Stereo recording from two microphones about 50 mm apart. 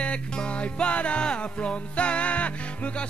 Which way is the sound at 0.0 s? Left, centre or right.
Centre.